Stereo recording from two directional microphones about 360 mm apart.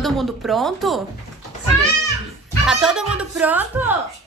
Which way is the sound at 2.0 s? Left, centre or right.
Centre.